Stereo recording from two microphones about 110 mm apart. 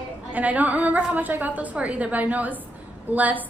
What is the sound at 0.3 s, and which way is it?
A woman's voice, 15° right (ahead or behind).